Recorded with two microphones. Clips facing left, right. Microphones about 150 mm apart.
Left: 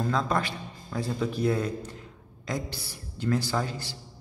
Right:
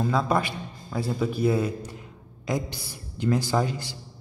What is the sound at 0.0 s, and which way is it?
A man's voice, 10° right (ahead or behind).